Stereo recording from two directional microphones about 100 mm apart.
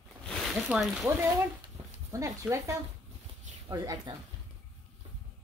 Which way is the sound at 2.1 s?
30° right (ahead or behind).